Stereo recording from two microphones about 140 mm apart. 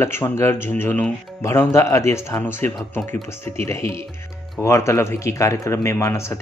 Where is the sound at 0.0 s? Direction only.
20° left (ahead or behind).